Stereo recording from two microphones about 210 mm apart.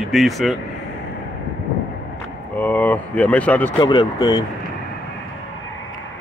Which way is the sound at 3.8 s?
20° left (ahead or behind).